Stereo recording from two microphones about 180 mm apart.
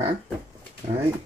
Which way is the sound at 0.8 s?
35° right (ahead or behind).